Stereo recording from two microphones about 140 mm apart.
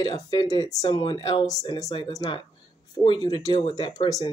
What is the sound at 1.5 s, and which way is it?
Speech, 25° left (ahead or behind).